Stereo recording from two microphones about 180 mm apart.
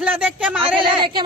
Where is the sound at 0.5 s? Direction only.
30° right (ahead or behind).